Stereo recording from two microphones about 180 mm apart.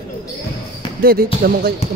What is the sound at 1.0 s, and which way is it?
Speech, 55° right (ahead or behind).